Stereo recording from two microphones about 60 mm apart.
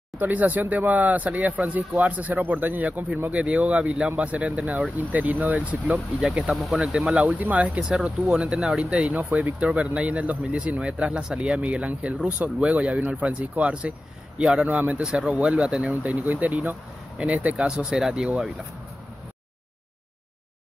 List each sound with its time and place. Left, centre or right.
0.2 s speech: right
6.2 s speech: centre
6.5 s speech: centre
6.8 s speech: centre
7.8 s speech: centre
14.7 s speech: right
17.6 s speech: centre